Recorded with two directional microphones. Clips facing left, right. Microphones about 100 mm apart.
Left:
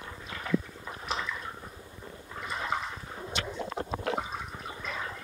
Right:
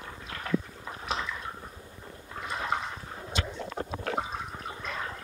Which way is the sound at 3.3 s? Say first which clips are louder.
Even; 30° left (ahead or behind).